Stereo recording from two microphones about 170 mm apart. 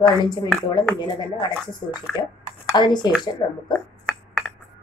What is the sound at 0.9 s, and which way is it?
Speech, 25° left (ahead or behind).